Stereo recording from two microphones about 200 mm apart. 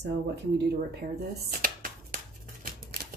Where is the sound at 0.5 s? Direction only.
55° right (ahead or behind).